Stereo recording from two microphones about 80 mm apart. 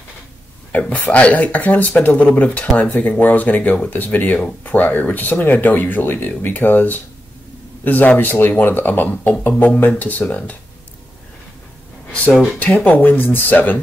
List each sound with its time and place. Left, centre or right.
0.7 s a man's voice: centre
12.1 s speech: centre